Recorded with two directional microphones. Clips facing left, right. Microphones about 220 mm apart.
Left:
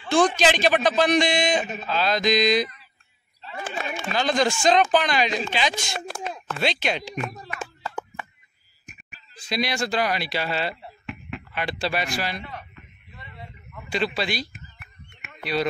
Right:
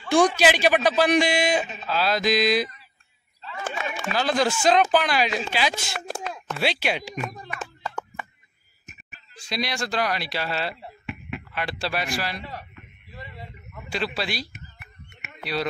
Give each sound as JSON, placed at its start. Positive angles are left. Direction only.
{"t": 0.4, "sound": "a man's voice", "side_deg": -10}
{"t": 1.9, "sound": "mantra", "side_deg": -5}
{"t": 4.1, "sound": "mantra", "side_deg": -5}
{"t": 5.9, "sound": "a sound", "side_deg": 25}
{"t": 6.5, "sound": "a man's voice", "side_deg": -10}
{"t": 7.3, "sound": "a sound", "side_deg": 5}
{"t": 9.5, "sound": "speech", "side_deg": 0}
{"t": 13.8, "sound": "mantra", "side_deg": 0}
{"t": 15.2, "sound": "a sound", "side_deg": 0}